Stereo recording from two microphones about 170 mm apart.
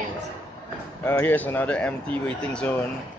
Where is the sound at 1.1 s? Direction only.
10° left (ahead or behind).